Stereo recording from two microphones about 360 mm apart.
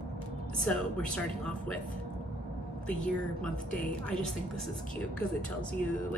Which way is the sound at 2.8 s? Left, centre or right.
Centre.